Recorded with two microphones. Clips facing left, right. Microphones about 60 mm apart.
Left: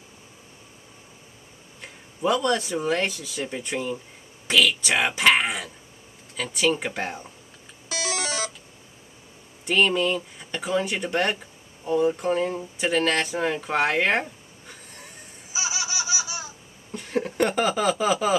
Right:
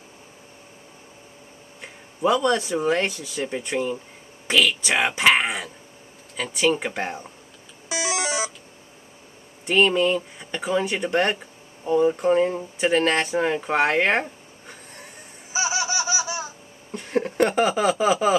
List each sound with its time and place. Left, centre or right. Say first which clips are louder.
1.8 s speech: right 4 dB; centre
7.9 s music: right 3 dB; centre
9.7 s speech: right 3 dB; centre
15.8 s laughter: right 5 dB; centre
16.9 s a sound: right 3 dB; centre